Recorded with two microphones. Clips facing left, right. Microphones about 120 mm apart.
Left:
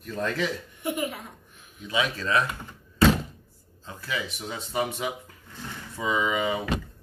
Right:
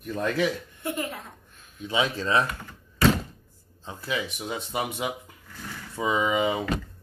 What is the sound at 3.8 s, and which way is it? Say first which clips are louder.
Speech: right 2 dB; 20° right (ahead or behind).